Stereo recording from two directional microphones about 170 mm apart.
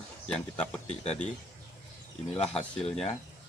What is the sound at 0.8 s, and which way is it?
Speech, 40° left (ahead or behind).